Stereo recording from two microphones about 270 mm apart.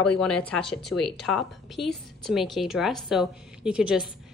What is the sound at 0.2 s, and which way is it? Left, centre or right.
A woman's voice, centre.